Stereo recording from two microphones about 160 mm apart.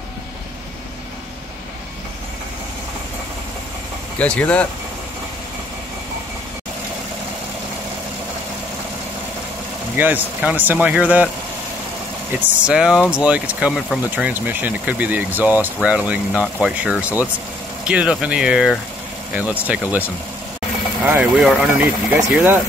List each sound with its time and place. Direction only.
4.2 s speech: 10° left (ahead or behind)
9.9 s speech: 10° right (ahead or behind)
12.4 s speech: 5° right (ahead or behind)